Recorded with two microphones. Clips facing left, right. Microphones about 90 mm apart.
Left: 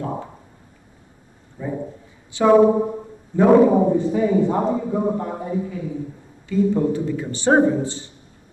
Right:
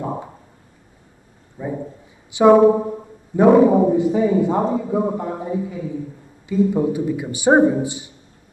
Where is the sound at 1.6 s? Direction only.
15° right (ahead or behind).